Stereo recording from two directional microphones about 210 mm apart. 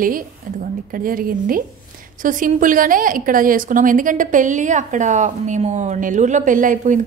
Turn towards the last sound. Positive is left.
turn(degrees=-40)  # may be behind; listen again after turning